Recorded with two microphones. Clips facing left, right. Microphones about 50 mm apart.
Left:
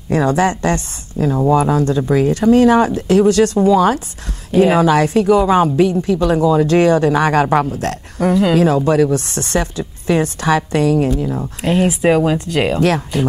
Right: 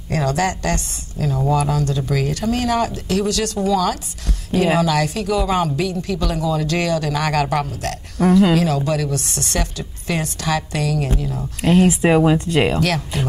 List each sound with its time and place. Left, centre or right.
0.1 s speech: left
11.9 s speech: centre